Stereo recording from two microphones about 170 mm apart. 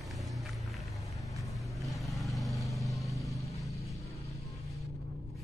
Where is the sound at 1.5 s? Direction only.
Centre (ahead or behind).